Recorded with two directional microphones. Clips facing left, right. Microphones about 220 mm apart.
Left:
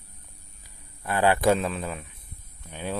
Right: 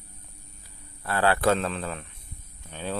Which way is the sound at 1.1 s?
15° left (ahead or behind).